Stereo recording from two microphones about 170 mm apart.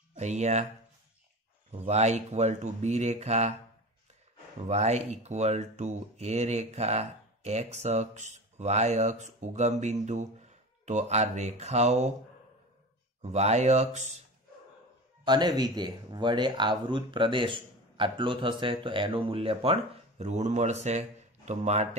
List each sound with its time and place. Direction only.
0.2 s speech: 40° right (ahead or behind)
1.7 s speech: 40° right (ahead or behind)
4.6 s speech: 40° right (ahead or behind)
13.2 s speech: 40° right (ahead or behind)
15.2 s speech: 25° right (ahead or behind); by 21.8 s 40° right (ahead or behind)